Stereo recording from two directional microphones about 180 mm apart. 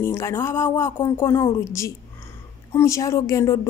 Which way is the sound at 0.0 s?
15° left (ahead or behind).